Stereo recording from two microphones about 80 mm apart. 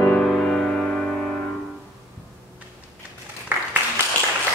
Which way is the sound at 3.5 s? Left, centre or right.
Right.